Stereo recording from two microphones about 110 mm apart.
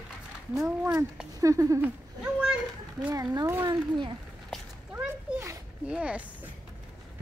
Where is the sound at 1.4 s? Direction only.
30° right (ahead or behind).